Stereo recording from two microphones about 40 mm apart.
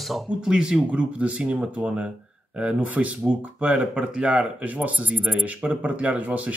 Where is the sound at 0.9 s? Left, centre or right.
Right.